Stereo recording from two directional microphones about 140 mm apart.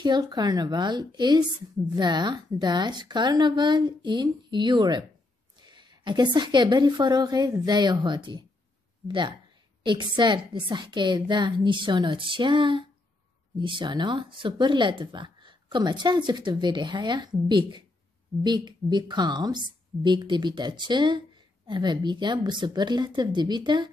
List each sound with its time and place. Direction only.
0.0 s speech: 30° right (ahead or behind)